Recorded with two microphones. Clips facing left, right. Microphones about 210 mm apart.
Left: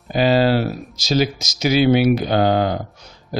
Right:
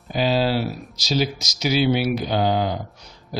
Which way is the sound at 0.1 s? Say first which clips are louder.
Left 5 dB; 55° left (ahead or behind).